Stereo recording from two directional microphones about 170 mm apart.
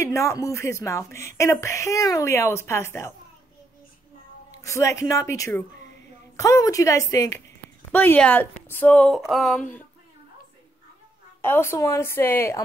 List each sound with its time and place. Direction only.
0.0 s speech: 15° left (ahead or behind)
4.6 s a woman's voice: 20° left (ahead or behind); by 9.7 s centre (ahead or behind)
11.4 s speech: 15° left (ahead or behind)